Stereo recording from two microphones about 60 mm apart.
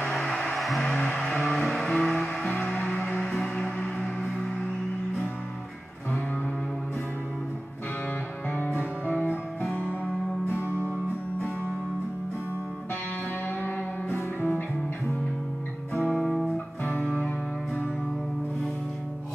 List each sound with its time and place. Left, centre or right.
0.6 s music: centre
0.8 s music: centre
3.0 s music: left
8.5 s music: left
10.6 s music: left
13.6 s music: left
16.1 s music: centre
16.8 s music: left